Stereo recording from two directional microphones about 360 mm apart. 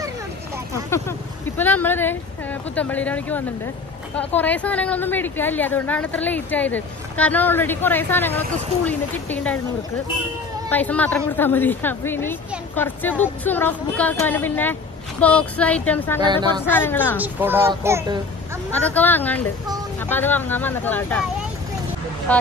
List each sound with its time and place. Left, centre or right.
0.8 s a woman's voice: centre
10.7 s a woman's voice: centre
16.2 s a child's voice: centre
16.6 s a woman's voice: centre
17.4 s a child's voice: centre
18.7 s a woman's voice: centre
22.3 s a woman's voice: centre